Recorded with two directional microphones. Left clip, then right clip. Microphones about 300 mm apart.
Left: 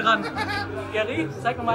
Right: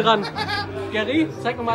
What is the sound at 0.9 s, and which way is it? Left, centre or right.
Speech, centre.